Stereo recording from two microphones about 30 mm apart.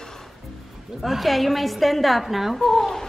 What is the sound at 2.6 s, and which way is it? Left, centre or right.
Speech, centre.